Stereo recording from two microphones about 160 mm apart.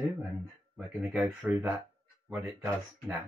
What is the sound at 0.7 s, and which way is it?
Speech, 5° right (ahead or behind).